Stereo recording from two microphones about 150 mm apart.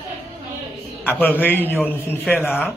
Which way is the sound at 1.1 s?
10° left (ahead or behind).